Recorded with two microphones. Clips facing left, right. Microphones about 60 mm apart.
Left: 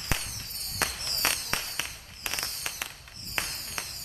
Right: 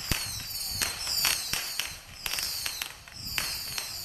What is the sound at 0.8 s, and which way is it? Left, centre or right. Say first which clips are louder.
Fireworks: left 5 dB; left.